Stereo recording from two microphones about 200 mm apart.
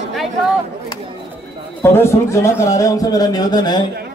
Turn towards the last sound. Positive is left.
turn(degrees=20)  # may be behind; listen again after turning